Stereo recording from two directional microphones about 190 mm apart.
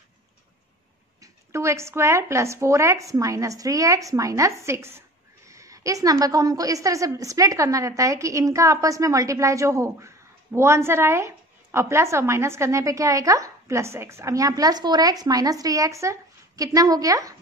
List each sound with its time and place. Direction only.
1.2 s speech: 15° right (ahead or behind)